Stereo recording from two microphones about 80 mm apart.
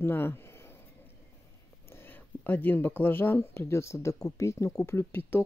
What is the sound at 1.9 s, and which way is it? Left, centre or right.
Speech, left.